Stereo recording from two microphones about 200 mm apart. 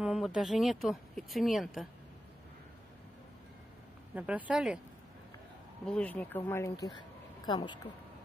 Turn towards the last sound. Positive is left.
turn(degrees=25)  # may be behind; listen again after turning